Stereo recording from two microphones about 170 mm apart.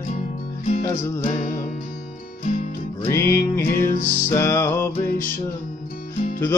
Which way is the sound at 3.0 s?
15° left (ahead or behind).